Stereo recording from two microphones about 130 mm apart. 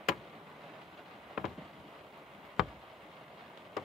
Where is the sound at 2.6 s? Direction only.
Centre (ahead or behind).